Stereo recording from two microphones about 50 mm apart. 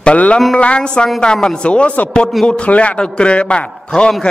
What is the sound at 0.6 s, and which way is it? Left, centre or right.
A man's voice, left.